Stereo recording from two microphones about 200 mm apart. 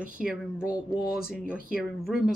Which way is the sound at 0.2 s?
5° right (ahead or behind).